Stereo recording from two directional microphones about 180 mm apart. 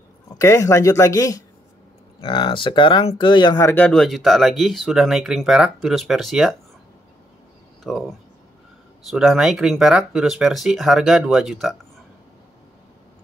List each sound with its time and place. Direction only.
0.4 s speech: 15° left (ahead or behind)
3.5 s speech: 10° left (ahead or behind)
7.8 s speech: centre (ahead or behind)
9.1 s speech: centre (ahead or behind)